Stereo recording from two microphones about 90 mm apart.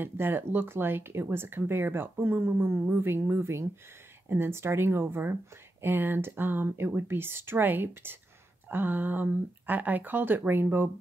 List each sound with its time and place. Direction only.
0.0 s speech: 25° right (ahead or behind)